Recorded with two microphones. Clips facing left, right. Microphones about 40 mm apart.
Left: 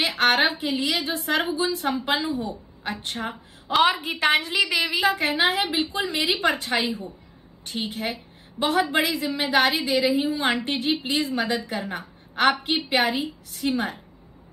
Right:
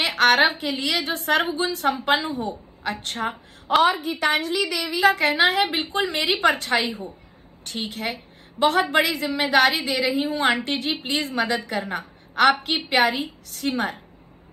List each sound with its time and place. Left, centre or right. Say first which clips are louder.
0.0 s a woman's voice: right 3 dB; right
3.8 s a woman's voice: right 1 dB; left
5.0 s a woman's voice: right 6 dB; right